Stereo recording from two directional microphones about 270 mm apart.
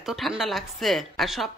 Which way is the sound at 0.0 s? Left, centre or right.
Centre.